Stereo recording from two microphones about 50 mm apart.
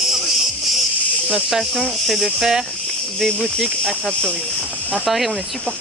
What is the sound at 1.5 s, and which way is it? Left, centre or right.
Speech, centre.